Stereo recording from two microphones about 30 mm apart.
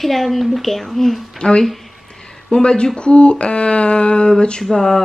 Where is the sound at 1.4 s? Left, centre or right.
Left.